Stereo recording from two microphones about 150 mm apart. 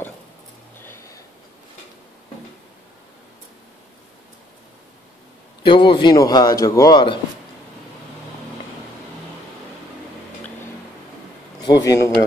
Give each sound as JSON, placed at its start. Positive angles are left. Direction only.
{"t": 5.6, "sound": "a man's voice", "side_deg": 30}
{"t": 11.6, "sound": "a man's voice", "side_deg": 25}